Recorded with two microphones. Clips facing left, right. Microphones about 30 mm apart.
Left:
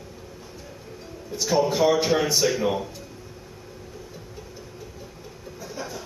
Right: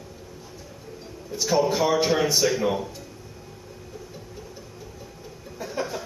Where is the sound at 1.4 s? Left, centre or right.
Centre.